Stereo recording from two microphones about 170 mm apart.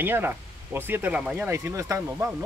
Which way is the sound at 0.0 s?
10° right (ahead or behind).